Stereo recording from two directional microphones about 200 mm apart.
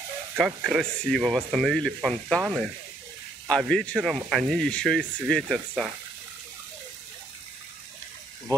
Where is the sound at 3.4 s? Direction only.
5° left (ahead or behind).